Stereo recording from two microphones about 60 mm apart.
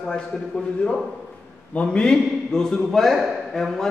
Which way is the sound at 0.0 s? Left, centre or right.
Centre.